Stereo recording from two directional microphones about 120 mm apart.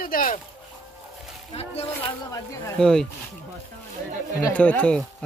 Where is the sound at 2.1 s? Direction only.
30° left (ahead or behind).